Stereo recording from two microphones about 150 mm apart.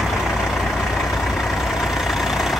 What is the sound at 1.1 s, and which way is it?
Vehicle, centre (ahead or behind).